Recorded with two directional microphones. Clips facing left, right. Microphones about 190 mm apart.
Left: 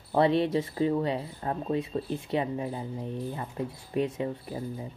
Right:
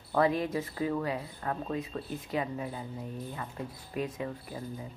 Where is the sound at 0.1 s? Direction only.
30° left (ahead or behind).